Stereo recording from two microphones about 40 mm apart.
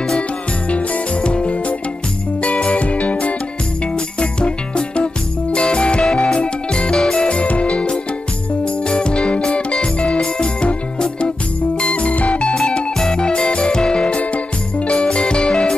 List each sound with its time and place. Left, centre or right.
0.7 s music: left
12.6 s music: centre